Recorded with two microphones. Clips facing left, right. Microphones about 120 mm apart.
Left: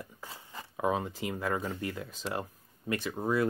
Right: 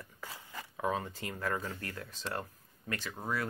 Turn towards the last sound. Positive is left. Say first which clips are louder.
# left 7 dB
turn(degrees=20)  # may be behind; listen again after turning